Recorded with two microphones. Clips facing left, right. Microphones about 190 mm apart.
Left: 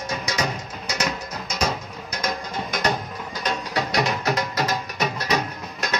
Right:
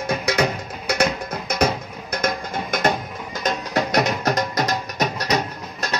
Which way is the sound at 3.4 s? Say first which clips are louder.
Right 4 dB; 45° right (ahead or behind).